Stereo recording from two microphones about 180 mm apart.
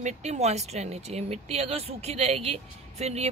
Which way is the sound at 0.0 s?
40° right (ahead or behind).